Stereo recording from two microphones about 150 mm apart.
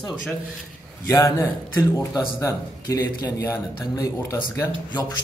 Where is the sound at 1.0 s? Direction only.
20° left (ahead or behind).